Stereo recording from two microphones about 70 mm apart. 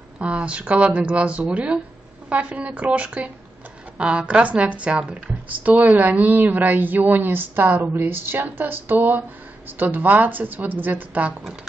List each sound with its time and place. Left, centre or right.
0.2 s speech: centre